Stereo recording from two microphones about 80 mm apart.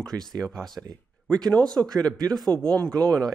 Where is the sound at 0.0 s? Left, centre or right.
Centre.